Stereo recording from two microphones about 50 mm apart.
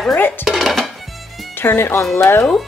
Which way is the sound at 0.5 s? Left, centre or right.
Centre.